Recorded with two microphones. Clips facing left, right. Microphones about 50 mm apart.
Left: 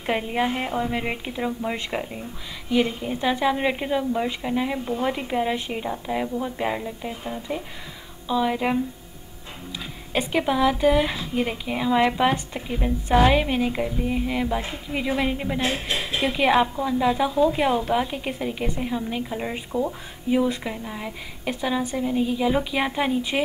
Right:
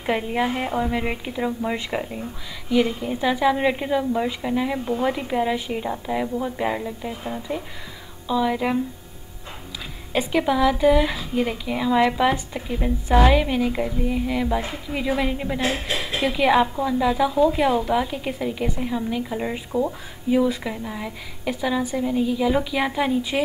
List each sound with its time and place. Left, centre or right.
0.0 s a woman's voice: centre
0.7 s a woman's voice: centre
0.9 s a woman's voice: centre
4.7 s speech: centre
5.0 s a woman's voice: centre
10.3 s a woman's voice: centre
19.7 s speech: left
20.2 s a woman's voice: centre